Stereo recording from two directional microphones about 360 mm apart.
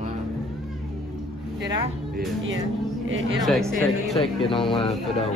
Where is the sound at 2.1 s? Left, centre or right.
Right.